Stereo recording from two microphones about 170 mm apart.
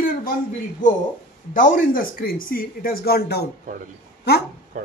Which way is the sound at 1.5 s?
50° left (ahead or behind).